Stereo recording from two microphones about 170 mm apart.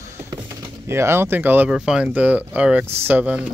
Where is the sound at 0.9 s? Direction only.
15° right (ahead or behind).